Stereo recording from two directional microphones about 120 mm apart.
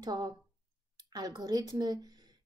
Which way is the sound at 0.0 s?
35° right (ahead or behind).